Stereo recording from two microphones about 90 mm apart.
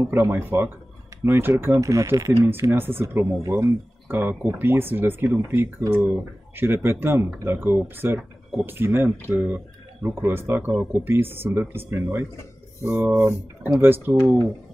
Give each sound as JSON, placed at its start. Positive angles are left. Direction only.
{"t": 0.0, "sound": "speech", "side_deg": -25}